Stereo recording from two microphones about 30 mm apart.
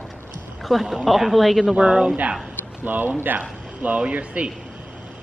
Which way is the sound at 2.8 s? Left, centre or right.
Right.